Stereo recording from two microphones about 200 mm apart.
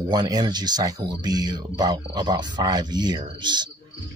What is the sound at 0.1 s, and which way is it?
Speech, 20° right (ahead or behind).